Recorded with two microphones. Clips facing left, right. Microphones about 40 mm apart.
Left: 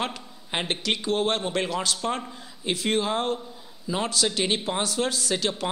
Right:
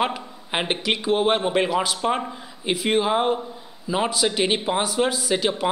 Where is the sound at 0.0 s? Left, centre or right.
Centre.